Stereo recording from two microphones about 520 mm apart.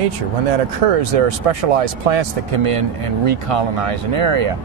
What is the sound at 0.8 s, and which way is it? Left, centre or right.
Speech, right.